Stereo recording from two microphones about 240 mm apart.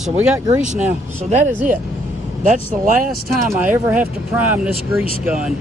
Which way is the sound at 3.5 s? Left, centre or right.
Centre.